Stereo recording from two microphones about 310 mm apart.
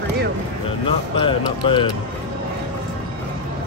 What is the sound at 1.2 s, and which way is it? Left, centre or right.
Speech, centre.